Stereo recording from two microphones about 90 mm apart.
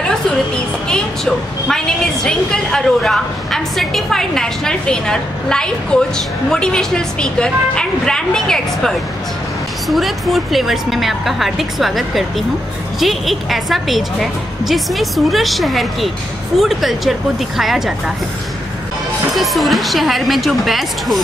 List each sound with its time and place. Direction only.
0.8 s a woman's voice: 5° left (ahead or behind)
19.3 s a woman's voice: centre (ahead or behind)